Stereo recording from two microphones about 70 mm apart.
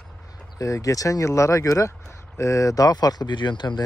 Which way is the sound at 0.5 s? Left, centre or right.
Left.